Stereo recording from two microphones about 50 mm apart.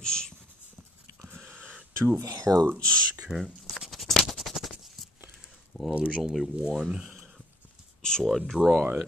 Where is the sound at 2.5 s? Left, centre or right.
Right.